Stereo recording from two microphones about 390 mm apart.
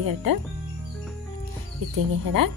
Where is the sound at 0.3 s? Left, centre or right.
Right.